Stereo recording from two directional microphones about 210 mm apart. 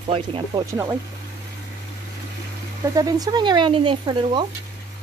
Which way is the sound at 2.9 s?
15° right (ahead or behind).